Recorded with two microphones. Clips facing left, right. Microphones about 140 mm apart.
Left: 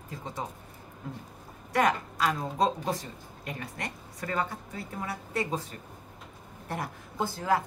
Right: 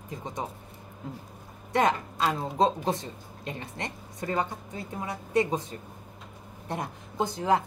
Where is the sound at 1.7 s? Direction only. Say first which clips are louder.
Right 1 dB; 25° right (ahead or behind).